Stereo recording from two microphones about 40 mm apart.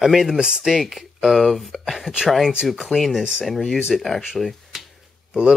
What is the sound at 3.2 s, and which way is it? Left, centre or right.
Speech, right.